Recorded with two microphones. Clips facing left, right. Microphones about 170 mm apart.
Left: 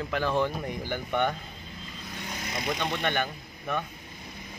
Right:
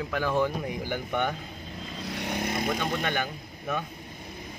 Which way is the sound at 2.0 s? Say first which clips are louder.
Right 8 dB; 70° right (ahead or behind).